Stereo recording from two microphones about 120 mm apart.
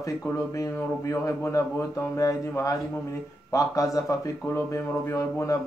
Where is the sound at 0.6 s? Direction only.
25° left (ahead or behind).